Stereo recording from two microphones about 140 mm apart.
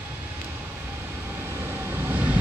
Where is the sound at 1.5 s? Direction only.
15° right (ahead or behind).